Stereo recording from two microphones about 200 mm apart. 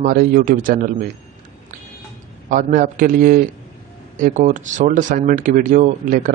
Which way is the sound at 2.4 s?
40° right (ahead or behind).